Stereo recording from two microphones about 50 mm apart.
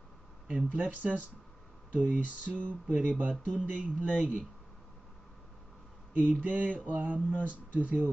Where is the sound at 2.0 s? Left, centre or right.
Left.